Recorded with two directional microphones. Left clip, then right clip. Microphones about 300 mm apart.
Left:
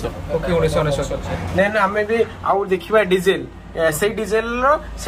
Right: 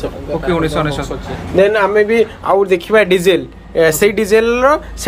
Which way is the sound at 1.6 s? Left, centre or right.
Right.